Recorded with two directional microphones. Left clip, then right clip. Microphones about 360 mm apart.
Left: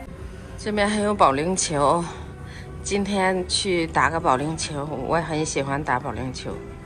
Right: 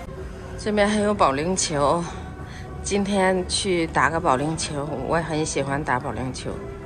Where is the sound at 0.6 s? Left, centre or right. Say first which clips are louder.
Right 2 dB; centre.